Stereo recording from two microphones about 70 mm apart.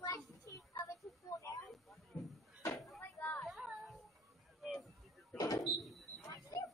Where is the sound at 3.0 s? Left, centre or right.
Left.